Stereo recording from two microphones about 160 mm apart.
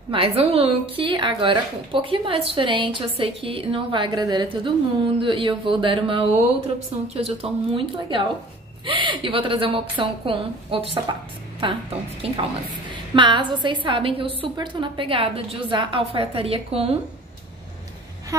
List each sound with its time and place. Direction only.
0.1 s a woman's voice: 35° right (ahead or behind)